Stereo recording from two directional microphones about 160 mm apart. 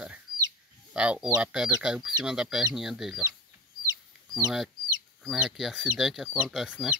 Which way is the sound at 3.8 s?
20° left (ahead or behind).